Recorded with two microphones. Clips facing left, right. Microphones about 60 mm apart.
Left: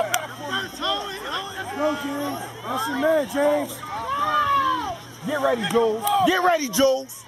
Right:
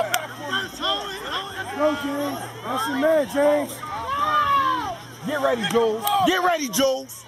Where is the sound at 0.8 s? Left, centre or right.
Centre.